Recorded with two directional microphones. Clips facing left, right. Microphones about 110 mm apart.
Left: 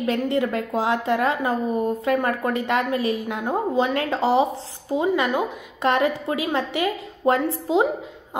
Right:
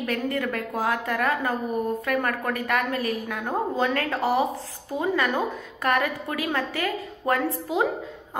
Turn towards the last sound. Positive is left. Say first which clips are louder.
# left 4 dB
turn(degrees=25)  # may be behind; listen again after turning